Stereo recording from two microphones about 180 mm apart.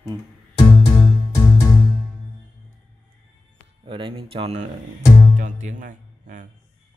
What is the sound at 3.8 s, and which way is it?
Speech, 30° right (ahead or behind).